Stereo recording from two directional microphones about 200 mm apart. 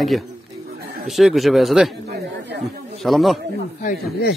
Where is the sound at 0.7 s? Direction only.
50° right (ahead or behind).